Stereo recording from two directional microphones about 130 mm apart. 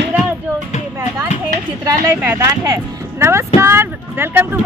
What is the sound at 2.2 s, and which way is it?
Speech, 25° right (ahead or behind).